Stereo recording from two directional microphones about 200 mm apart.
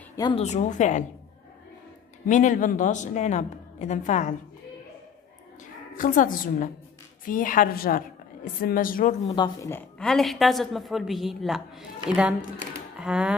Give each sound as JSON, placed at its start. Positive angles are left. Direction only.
{"t": 0.1, "sound": "a sound", "side_deg": 20}
{"t": 0.4, "sound": "a woman's voice", "side_deg": 35}
{"t": 2.2, "sound": "a woman's voice", "side_deg": 40}
{"t": 5.9, "sound": "a woman's voice", "side_deg": 45}
{"t": 9.3, "sound": "a woman's voice", "side_deg": 20}